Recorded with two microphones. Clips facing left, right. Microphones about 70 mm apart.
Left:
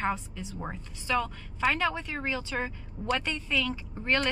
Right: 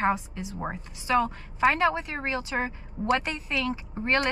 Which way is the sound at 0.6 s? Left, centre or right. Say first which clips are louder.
Right 5 dB; right.